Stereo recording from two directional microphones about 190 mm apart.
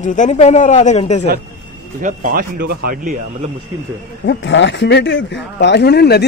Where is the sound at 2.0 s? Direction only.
45° right (ahead or behind).